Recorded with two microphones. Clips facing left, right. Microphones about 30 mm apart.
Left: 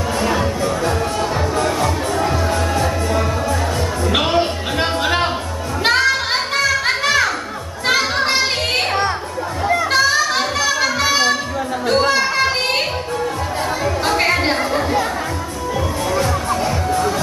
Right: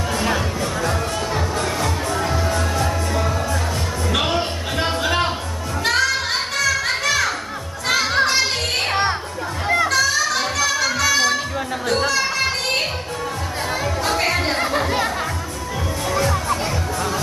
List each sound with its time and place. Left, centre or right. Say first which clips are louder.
0.2 s music: left 5 dB; centre
7.9 s children playing: left 1 dB; centre
9.8 s children playing: left 3 dB; left
16.1 s music: even; centre